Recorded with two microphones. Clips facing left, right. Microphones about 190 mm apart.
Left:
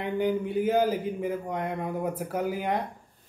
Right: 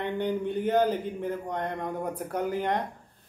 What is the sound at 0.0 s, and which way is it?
Speech, 5° left (ahead or behind).